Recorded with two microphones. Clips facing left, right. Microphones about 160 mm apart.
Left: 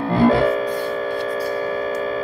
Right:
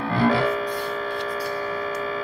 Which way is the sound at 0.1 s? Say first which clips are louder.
Left 5 dB; 20° left (ahead or behind).